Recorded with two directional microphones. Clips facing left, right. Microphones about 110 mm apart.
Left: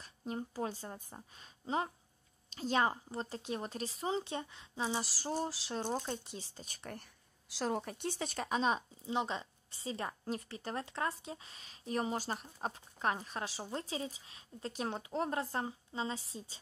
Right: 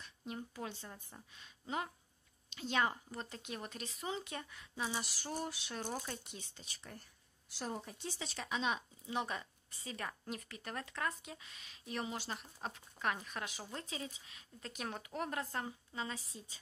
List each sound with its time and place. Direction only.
0.0 s a woman's voice: 35° left (ahead or behind)
5.3 s a sound: 30° left (ahead or behind)
5.9 s a woman's voice: 25° left (ahead or behind); by 6.9 s 45° left (ahead or behind)
6.9 s speech: 80° left; by 9.1 s 35° left (ahead or behind)
9.1 s a woman's voice: 25° left (ahead or behind)